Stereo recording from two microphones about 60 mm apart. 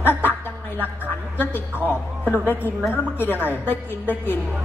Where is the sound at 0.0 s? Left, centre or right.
Left.